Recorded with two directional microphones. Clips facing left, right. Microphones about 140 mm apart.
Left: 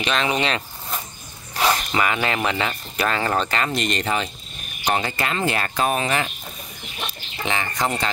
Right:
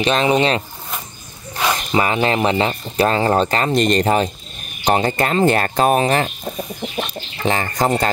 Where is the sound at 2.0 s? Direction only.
30° right (ahead or behind).